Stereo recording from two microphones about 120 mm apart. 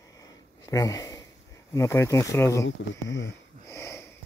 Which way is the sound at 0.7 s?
25° left (ahead or behind).